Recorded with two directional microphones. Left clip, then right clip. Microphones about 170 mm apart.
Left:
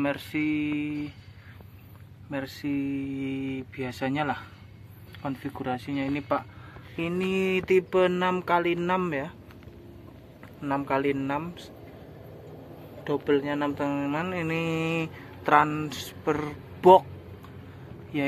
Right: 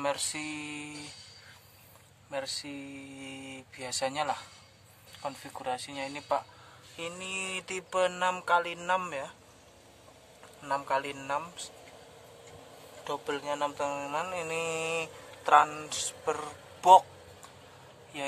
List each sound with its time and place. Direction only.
0.0 s a sound: 25° right (ahead or behind)
2.3 s speech: 5° right (ahead or behind)
7.0 s speech: 15° left (ahead or behind)
10.6 s speech: centre (ahead or behind)
13.0 s speech: centre (ahead or behind)